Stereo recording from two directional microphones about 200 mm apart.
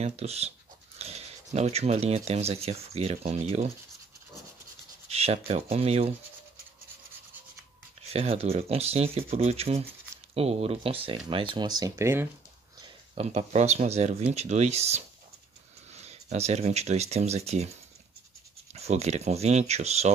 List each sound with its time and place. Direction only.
0.0 s speech: 30° right (ahead or behind)
5.1 s speech: 30° right (ahead or behind)
8.1 s speech: 30° right (ahead or behind); by 12.3 s 10° right (ahead or behind)
13.1 s speech: 30° right (ahead or behind)
18.7 s speech: 30° right (ahead or behind)